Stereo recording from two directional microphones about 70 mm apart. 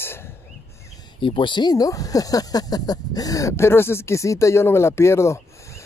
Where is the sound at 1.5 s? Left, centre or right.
Left.